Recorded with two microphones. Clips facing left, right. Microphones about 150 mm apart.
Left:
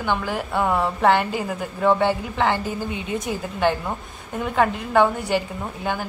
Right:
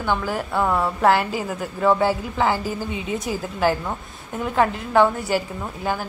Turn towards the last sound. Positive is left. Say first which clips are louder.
# right 1 dB
turn(degrees=-5)  # may be behind; listen again after turning